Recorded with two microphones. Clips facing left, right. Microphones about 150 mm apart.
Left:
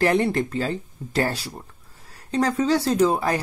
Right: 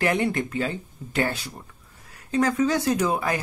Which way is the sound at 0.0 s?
35° left (ahead or behind).